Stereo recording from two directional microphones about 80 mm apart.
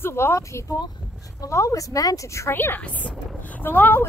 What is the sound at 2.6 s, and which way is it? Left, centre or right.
Speech, left.